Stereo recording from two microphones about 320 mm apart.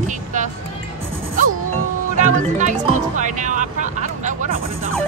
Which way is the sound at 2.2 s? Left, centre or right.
Right.